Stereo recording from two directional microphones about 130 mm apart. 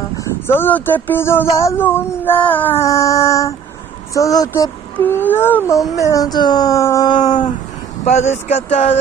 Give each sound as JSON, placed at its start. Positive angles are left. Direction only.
{"t": 0.2, "sound": "speech", "side_deg": 15}
{"t": 2.8, "sound": "a sound", "side_deg": 25}
{"t": 5.0, "sound": "speech", "side_deg": 15}
{"t": 8.0, "sound": "speech", "side_deg": 60}